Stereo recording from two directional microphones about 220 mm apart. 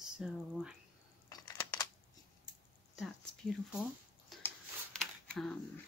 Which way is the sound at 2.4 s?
Centre (ahead or behind).